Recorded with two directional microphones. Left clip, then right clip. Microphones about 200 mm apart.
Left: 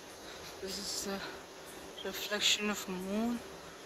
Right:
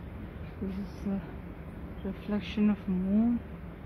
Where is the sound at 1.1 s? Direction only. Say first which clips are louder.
Right 6 dB; 10° left (ahead or behind).